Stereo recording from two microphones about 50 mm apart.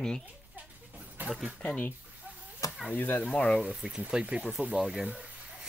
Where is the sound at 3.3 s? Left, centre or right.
Centre.